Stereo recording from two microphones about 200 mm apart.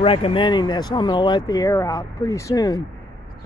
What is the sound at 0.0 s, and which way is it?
Speech, 25° left (ahead or behind).